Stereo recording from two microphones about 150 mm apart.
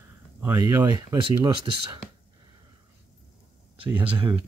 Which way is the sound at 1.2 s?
35° right (ahead or behind).